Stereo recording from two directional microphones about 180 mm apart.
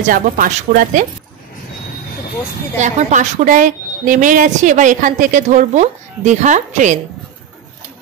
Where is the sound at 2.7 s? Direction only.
40° right (ahead or behind).